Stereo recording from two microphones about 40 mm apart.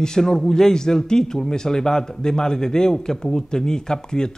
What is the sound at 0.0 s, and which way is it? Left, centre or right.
A man's voice, centre.